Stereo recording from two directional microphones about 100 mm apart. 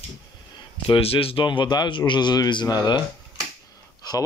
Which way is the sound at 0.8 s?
65° left (ahead or behind).